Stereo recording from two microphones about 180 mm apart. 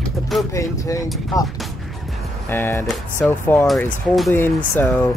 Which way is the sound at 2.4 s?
15° left (ahead or behind).